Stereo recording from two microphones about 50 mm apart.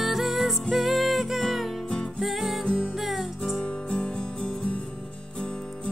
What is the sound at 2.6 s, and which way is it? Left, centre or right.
Music, centre.